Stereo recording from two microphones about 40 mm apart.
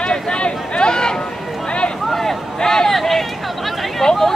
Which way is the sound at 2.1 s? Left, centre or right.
Centre.